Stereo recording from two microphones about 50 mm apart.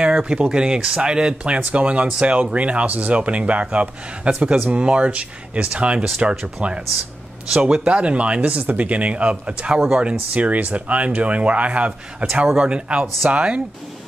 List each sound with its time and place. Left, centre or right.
0.0 s speech: centre